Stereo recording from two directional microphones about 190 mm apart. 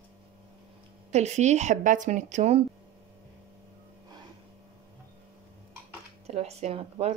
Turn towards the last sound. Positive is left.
turn(degrees=-30)  # may be behind; listen again after turning